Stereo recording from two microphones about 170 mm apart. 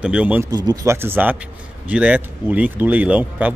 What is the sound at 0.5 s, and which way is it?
Speech, 20° right (ahead or behind).